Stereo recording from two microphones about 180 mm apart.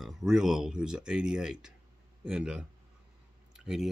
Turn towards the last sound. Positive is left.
turn(degrees=-5)  # may be behind; listen again after turning